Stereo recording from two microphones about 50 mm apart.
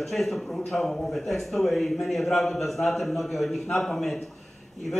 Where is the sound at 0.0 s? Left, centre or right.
Centre.